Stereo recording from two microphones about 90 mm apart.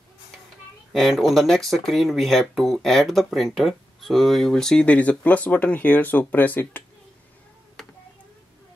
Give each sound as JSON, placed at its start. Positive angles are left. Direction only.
{"t": 0.9, "sound": "speech", "side_deg": 0}